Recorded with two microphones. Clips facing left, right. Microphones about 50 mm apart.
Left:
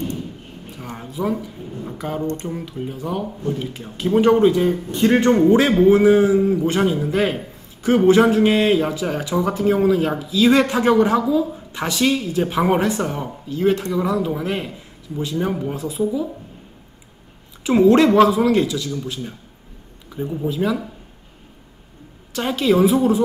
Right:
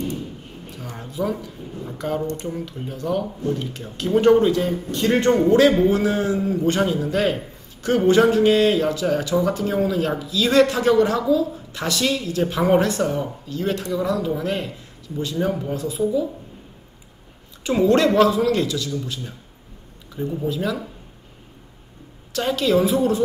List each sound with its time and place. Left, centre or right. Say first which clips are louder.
1.2 s a man's voice: left 2 dB; centre
17.6 s a man's voice: left 4 dB; centre
22.3 s a man's voice: left 1 dB; centre